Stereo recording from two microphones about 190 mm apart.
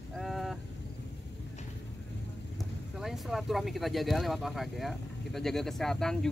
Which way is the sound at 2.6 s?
Centre (ahead or behind).